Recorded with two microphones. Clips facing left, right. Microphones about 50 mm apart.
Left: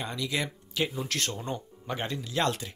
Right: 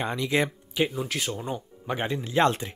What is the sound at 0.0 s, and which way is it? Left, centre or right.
Speech, right.